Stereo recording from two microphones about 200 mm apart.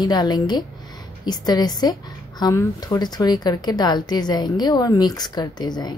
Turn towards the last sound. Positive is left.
turn(degrees=20)  # may be behind; listen again after turning